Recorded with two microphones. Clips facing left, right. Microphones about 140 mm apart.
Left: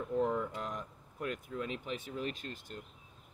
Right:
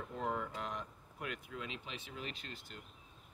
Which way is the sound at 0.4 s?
45° left (ahead or behind).